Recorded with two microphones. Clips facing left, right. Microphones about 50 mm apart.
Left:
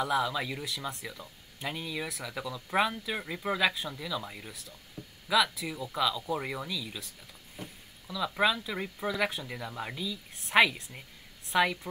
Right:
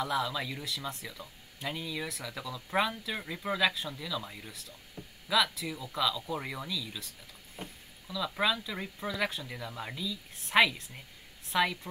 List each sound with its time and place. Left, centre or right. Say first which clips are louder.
0.0 s speech: left 3 dB; centre
8.1 s a woman's voice: left 3 dB; centre